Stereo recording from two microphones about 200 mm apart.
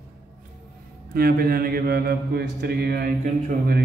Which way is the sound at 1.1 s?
50° right (ahead or behind).